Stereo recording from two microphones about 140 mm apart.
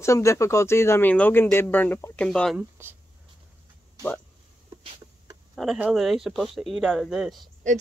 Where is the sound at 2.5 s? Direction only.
15° right (ahead or behind).